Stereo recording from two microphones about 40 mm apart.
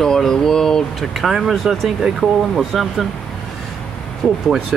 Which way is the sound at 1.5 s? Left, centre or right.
Centre.